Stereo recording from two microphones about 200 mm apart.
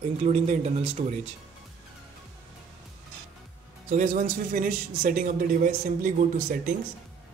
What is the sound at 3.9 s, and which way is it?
A man's voice, 40° right (ahead or behind).